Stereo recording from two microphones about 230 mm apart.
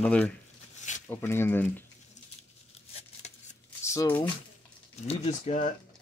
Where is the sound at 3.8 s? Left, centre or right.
Centre.